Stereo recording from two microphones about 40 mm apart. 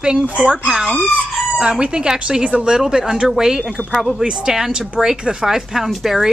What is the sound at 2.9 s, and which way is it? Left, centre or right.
Speech, centre.